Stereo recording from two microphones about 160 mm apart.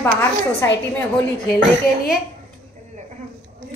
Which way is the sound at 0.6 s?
20° left (ahead or behind).